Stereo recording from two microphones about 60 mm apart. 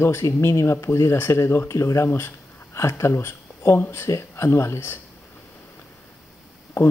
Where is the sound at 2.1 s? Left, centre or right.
Left.